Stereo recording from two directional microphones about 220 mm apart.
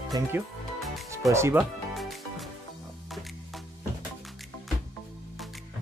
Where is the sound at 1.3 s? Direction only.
10° right (ahead or behind).